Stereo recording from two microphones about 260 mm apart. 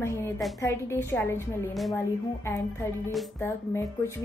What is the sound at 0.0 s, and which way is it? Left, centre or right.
A woman's voice, centre.